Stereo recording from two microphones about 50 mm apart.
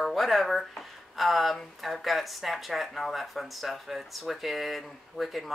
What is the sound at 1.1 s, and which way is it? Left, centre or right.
Speech, centre.